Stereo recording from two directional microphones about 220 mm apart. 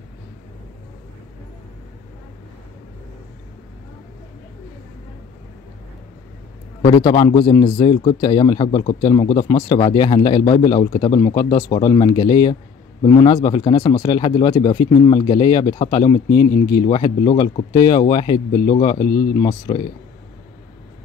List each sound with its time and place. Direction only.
6.9 s speech: 20° left (ahead or behind)